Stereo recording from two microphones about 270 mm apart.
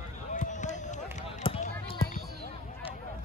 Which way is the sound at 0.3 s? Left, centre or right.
Left.